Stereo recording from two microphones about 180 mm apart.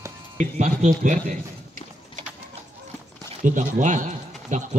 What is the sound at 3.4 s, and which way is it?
Speech, 45° right (ahead or behind).